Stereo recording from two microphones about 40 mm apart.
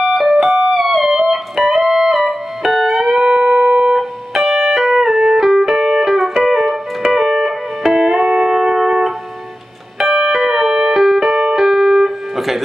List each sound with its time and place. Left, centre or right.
0.0 s music: centre
3.2 s music: right
3.9 s music: centre
5.4 s keyboard: centre
7.1 s music: centre
10.1 s keyboard: centre